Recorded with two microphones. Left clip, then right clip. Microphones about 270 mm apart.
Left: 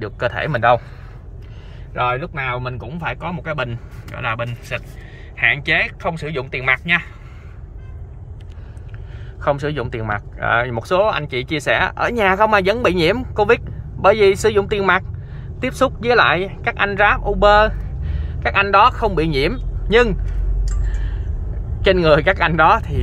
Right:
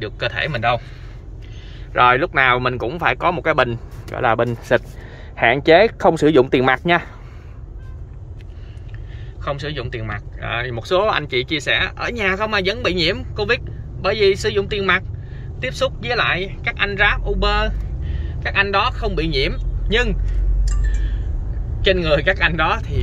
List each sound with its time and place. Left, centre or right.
0.0 s speech: centre
2.8 s speech: centre
5.9 s speech: right
9.4 s a man's voice: centre
20.9 s a sound: centre
21.8 s speech: centre